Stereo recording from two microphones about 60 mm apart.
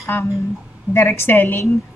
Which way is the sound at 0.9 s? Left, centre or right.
Left.